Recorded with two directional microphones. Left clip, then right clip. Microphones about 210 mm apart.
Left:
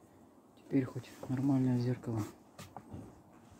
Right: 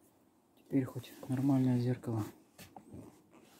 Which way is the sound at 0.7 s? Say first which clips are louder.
Left 1 dB; 25° right (ahead or behind).